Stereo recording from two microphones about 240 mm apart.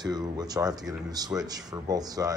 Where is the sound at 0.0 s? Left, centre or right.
Centre.